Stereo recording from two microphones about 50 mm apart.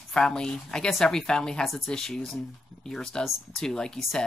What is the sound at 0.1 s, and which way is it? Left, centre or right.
Speech, centre.